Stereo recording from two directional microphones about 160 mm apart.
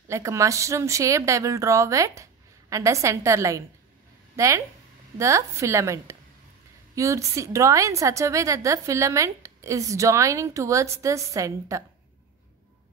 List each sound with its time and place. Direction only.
0.1 s a woman's voice: 20° right (ahead or behind)